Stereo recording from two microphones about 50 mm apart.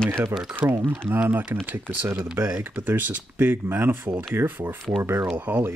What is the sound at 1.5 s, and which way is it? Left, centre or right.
Speech, right.